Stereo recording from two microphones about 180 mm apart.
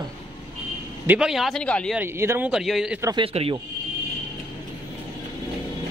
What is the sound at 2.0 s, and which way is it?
Speech, 10° right (ahead or behind).